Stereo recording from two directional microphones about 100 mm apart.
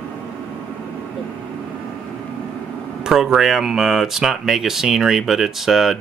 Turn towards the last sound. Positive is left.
turn(degrees=0)  # may be behind; listen again after turning